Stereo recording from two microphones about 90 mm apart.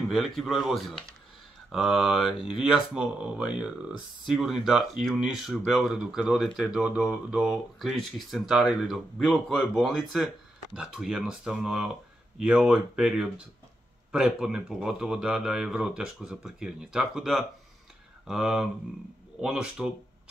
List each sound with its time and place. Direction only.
0.1 s speech: centre (ahead or behind)